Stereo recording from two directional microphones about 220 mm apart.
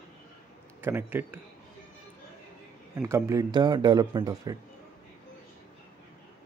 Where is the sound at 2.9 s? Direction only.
15° right (ahead or behind).